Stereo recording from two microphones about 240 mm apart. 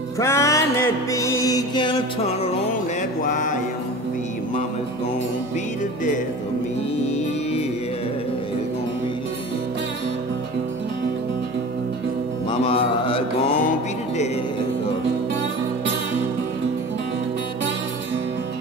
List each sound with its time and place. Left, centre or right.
0.2 s music: centre; by 3.5 s left
12.6 s mantra: left